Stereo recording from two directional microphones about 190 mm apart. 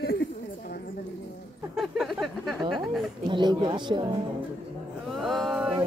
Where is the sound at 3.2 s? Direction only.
25° right (ahead or behind).